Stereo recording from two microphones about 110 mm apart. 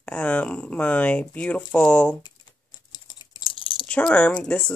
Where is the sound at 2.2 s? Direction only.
40° left (ahead or behind).